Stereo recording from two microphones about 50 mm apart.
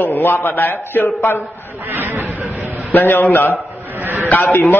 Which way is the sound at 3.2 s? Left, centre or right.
Left.